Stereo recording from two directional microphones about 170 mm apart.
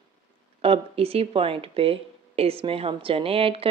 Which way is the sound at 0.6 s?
35° right (ahead or behind).